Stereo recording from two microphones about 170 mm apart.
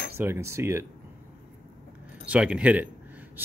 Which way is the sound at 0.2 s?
15° right (ahead or behind).